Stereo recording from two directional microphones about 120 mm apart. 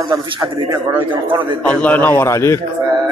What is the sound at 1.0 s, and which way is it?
Speech, 45° right (ahead or behind).